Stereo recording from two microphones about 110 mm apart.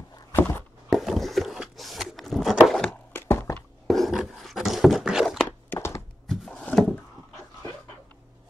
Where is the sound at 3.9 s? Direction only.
Centre (ahead or behind).